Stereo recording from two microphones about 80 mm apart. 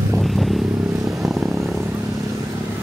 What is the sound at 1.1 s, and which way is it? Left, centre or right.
Purr, centre.